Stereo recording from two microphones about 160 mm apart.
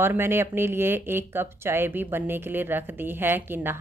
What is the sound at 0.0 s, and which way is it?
Speech, 15° right (ahead or behind).